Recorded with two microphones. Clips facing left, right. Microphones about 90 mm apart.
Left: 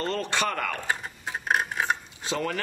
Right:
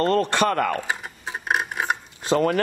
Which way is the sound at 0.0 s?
55° right (ahead or behind).